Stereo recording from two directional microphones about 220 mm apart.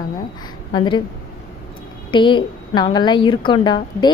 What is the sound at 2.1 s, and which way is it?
A woman's voice, 20° left (ahead or behind).